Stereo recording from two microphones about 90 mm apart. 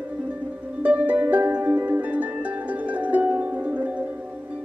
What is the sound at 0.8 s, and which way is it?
Music, 15° right (ahead or behind).